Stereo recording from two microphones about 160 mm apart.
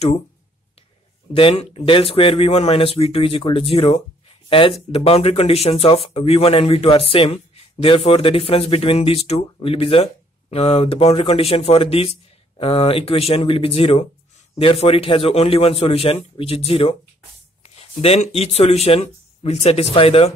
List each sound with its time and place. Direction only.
1.3 s a man's voice: 35° left (ahead or behind)